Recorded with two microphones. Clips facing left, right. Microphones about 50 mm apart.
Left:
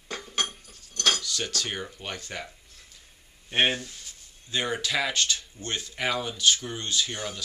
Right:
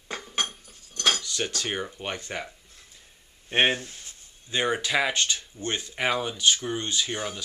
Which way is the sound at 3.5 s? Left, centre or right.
Right.